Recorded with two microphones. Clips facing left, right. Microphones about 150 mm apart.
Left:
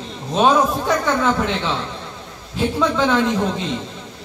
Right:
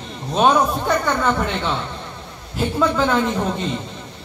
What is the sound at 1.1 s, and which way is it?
A woman's voice, centre (ahead or behind).